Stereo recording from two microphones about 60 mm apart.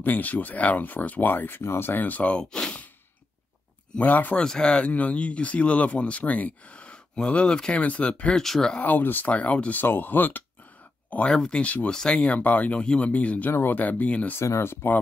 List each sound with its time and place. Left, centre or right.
0.0 s speech: left
4.0 s speech: left
4.4 s speech: centre
8.4 s speech: centre
8.8 s speech: left
11.3 s speech: centre
11.6 s speech: left
11.9 s speech: centre
12.8 s speech: centre
13.1 s speech: left
13.5 s speech: left
14.4 s speech: left